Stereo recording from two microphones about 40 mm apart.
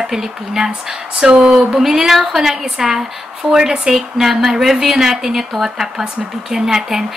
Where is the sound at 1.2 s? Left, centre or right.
Right.